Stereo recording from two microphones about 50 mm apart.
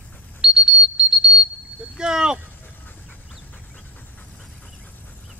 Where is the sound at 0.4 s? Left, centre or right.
Centre.